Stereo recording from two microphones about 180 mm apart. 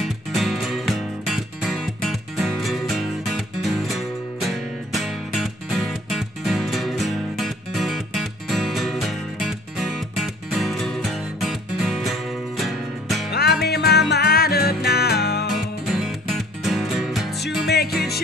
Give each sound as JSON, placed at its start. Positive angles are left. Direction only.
{"t": 0.0, "sound": "music", "side_deg": 0}
{"t": 13.3, "sound": "music", "side_deg": 60}
{"t": 15.8, "sound": "music", "side_deg": 0}